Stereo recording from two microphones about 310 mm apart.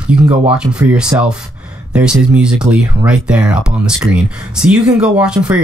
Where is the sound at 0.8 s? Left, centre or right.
Centre.